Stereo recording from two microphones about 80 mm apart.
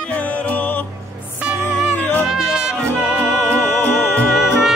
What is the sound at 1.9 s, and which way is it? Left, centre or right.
Music, left.